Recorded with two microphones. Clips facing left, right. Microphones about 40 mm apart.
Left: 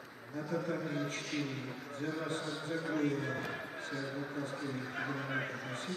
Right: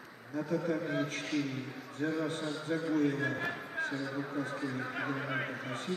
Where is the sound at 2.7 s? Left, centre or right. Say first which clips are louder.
Right 5 dB; right.